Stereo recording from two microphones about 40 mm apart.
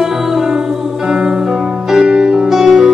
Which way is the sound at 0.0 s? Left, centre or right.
Centre.